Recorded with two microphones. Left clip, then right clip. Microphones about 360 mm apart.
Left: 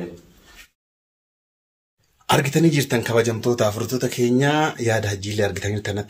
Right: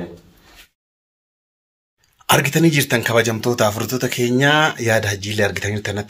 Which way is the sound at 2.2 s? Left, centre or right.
Centre.